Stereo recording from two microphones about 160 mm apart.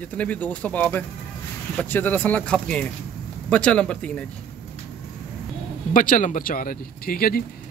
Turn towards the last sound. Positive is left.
turn(degrees=65)  # may be behind; listen again after turning